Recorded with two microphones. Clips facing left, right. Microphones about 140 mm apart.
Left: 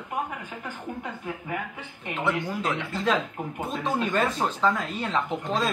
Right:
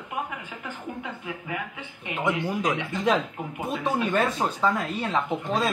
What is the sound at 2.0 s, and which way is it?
Speech, 10° right (ahead or behind).